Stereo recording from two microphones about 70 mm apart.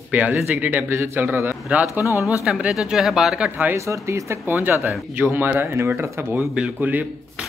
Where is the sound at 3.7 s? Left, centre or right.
Right.